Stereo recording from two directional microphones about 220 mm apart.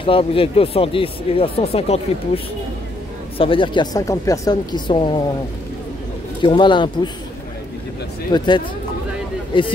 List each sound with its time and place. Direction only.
0.0 s speech: 25° left (ahead or behind)
6.4 s speech: 20° left (ahead or behind)
8.3 s a man's voice: 20° left (ahead or behind)